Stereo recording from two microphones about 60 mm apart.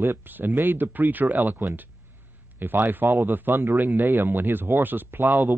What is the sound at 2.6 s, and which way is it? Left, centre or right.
Speech, right.